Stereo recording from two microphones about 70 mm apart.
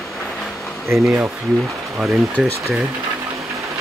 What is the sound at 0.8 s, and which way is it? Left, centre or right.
Speech, right.